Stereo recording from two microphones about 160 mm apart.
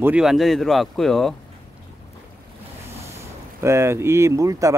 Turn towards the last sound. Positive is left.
turn(degrees=-20)  # may be behind; listen again after turning